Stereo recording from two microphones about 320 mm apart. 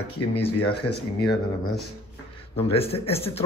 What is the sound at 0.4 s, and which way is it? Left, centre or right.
Speech, centre.